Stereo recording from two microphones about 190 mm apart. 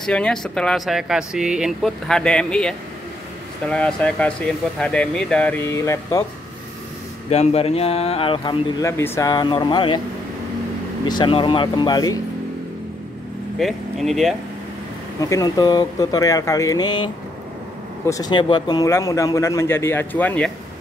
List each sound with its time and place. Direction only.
0.0 s speech: 5° left (ahead or behind)
7.2 s speech: 35° left (ahead or behind)
8.8 s speech: 15° left (ahead or behind)
11.1 s speech: 25° left (ahead or behind)
13.6 s speech: centre (ahead or behind)
15.1 s speech: 15° left (ahead or behind)